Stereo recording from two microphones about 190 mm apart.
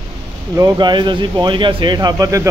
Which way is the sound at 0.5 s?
20° right (ahead or behind).